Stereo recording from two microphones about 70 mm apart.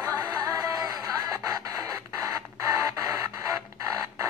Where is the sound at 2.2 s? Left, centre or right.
Right.